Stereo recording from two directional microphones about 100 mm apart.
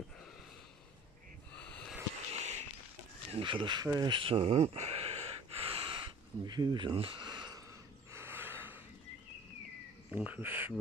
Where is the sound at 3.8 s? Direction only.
45° right (ahead or behind); by 6.1 s 65° right (ahead or behind).